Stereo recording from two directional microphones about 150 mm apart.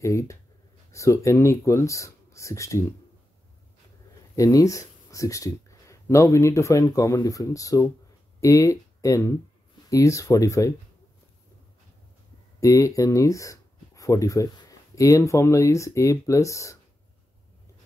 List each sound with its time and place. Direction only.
0.0 s speech: 20° left (ahead or behind)
4.4 s speech: 20° left (ahead or behind)
12.5 s speech: 20° left (ahead or behind)